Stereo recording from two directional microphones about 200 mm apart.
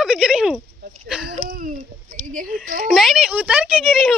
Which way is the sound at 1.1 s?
Centre (ahead or behind).